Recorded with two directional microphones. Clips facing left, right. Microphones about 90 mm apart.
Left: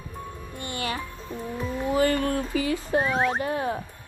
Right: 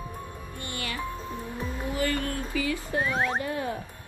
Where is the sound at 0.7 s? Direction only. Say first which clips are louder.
Left 3 dB; 25° left (ahead or behind).